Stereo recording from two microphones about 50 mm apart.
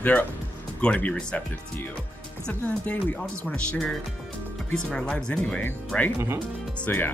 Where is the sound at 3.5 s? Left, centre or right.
Centre.